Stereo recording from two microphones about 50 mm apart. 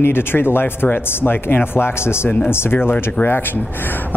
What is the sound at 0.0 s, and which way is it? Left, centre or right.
Speech, left.